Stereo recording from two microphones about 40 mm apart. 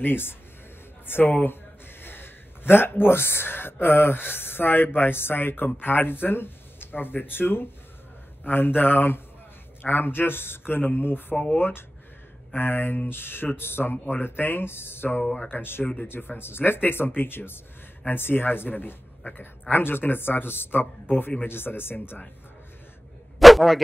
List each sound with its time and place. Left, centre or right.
0.0 s speech: left
14.2 s speech: left
23.4 s dog: centre